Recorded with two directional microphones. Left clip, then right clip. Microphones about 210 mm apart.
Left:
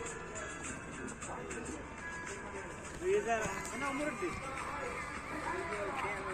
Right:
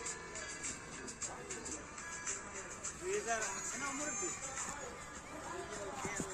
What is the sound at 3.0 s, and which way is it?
Music, 20° left (ahead or behind).